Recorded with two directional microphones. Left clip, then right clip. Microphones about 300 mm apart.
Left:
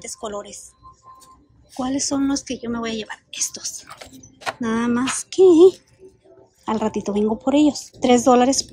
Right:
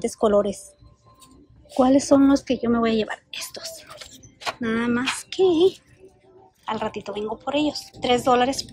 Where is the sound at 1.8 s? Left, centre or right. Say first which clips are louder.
Right 7 dB; centre.